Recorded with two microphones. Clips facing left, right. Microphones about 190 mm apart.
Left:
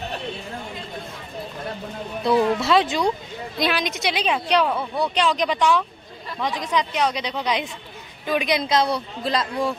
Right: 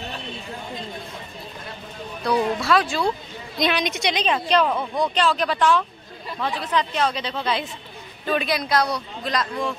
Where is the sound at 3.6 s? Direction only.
5° left (ahead or behind); by 9.7 s 30° left (ahead or behind).